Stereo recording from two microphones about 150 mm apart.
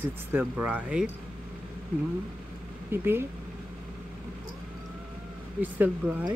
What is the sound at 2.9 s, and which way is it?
Speech, 15° right (ahead or behind).